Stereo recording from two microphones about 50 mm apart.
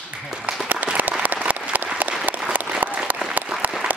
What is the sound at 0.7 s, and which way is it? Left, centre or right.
Applause, right.